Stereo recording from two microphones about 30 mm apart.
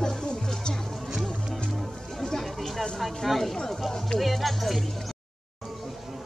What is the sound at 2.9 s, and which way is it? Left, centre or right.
Speech, centre.